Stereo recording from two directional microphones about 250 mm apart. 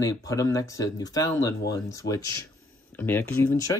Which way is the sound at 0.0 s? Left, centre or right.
Centre.